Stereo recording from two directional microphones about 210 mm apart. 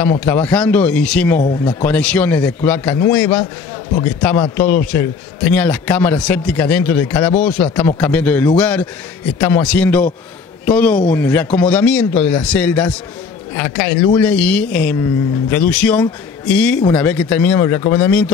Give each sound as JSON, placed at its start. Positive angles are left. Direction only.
{"t": 0.0, "sound": "a man's voice", "side_deg": 10}